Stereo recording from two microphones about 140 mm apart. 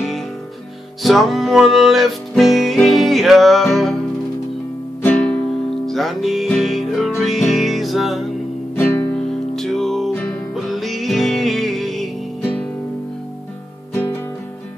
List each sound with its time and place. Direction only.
1.0 s music: centre (ahead or behind)
5.0 s music: 5° left (ahead or behind)
8.7 s music: 15° left (ahead or behind)
9.1 s music: 5° left (ahead or behind)